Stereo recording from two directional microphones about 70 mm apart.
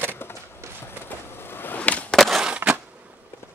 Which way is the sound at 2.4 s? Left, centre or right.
Centre.